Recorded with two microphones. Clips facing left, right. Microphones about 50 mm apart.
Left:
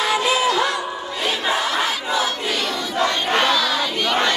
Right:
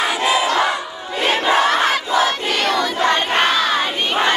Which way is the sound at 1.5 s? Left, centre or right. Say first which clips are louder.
Right 7 dB; right.